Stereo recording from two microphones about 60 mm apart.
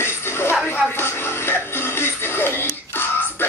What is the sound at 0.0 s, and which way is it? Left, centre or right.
Television, left.